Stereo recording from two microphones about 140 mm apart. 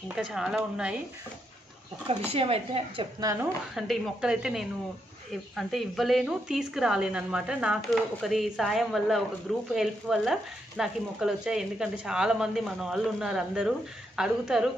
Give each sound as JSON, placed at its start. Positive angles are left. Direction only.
{"t": 0.1, "sound": "speech", "side_deg": -5}
{"t": 2.0, "sound": "a woman's voice", "side_deg": -45}
{"t": 3.7, "sound": "speech", "side_deg": 0}